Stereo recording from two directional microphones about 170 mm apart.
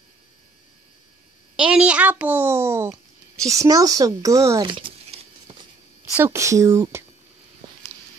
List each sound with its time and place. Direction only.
1.6 s a child's voice: 5° right (ahead or behind); by 5.6 s 30° right (ahead or behind)
6.1 s speech: 15° right (ahead or behind)